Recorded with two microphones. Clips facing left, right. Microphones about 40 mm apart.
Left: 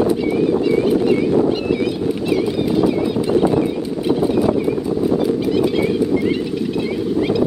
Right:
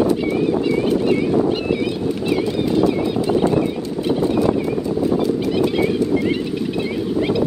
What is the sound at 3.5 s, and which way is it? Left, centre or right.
Boat, centre.